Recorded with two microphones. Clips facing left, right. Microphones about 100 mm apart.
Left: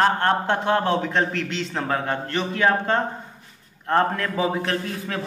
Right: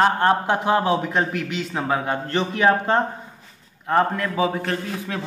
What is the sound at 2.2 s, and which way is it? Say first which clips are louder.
Speech: right 4 dB; 20° right (ahead or behind).